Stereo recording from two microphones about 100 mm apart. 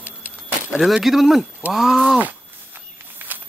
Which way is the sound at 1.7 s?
Centre (ahead or behind).